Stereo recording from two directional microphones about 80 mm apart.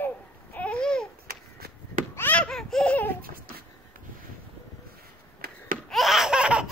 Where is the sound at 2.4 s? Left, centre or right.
Centre.